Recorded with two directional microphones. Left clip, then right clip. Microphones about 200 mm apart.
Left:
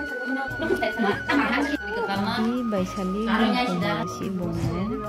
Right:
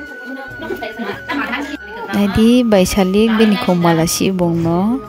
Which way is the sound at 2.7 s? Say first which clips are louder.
Right 15 dB; 55° right (ahead or behind).